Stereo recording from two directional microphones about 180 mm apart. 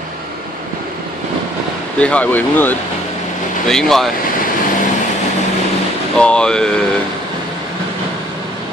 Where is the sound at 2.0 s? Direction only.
5° left (ahead or behind).